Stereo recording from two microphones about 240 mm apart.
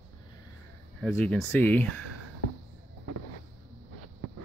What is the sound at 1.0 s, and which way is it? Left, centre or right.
Speech, centre.